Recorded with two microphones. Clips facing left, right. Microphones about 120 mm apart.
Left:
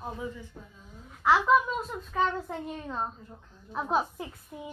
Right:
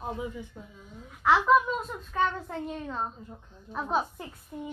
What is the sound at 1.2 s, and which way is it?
A woman's voice, centre (ahead or behind).